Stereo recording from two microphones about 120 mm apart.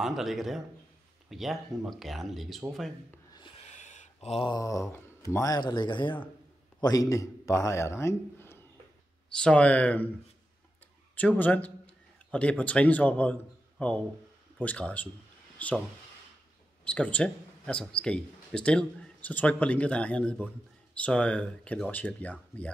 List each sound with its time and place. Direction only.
0.0 s speech: centre (ahead or behind)
3.5 s a sound: 75° left (ahead or behind)
4.5 s a sound: 30° left (ahead or behind)
4.9 s speech: 25° left (ahead or behind); by 6.1 s 40° left (ahead or behind)
6.8 s a man's voice: 30° left (ahead or behind)
9.3 s speech: 10° left (ahead or behind)
11.1 s a man's voice: 15° left (ahead or behind)
16.8 s speech: 10° left (ahead or behind)